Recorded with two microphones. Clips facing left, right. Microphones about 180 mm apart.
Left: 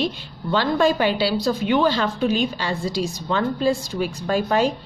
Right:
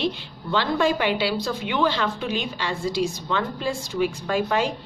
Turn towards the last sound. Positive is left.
turn(degrees=40)  # may be behind; listen again after turning